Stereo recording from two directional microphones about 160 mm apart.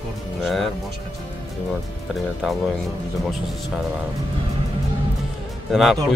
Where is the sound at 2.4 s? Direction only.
Centre (ahead or behind).